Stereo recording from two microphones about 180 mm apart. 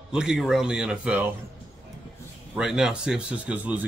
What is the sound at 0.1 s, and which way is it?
Speech, 5° right (ahead or behind).